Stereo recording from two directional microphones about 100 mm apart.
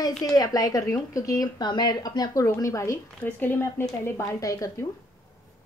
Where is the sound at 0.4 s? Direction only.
35° left (ahead or behind).